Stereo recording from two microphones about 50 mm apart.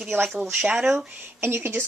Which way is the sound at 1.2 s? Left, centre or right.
Right.